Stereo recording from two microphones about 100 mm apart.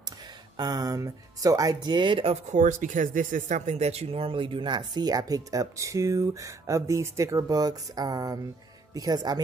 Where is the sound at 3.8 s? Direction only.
90° right.